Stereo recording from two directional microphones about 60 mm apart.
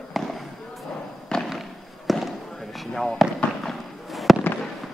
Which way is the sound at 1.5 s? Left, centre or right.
Centre.